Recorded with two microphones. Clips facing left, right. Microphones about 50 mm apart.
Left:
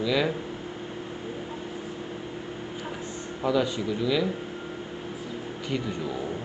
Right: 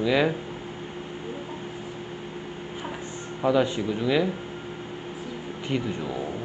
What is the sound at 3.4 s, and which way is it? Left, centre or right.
Speech, right.